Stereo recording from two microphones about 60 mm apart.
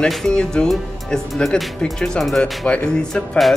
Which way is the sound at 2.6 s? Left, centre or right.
Centre.